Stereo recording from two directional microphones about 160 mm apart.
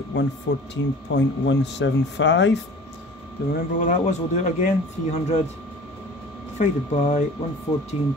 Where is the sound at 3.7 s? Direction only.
50° left (ahead or behind).